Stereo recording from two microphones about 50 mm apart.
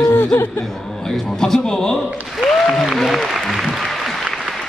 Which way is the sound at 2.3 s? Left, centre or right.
Centre.